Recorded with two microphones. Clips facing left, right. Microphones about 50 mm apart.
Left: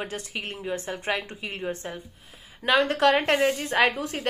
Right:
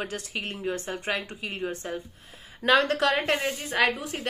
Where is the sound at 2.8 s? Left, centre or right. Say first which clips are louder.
Left 6 dB; left.